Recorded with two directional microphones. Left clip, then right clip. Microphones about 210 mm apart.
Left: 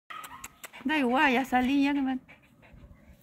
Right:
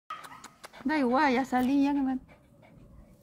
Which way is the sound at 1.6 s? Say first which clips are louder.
Even; 20° left (ahead or behind).